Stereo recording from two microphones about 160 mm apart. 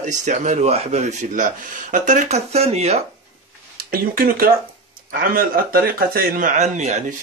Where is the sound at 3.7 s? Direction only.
65° right (ahead or behind).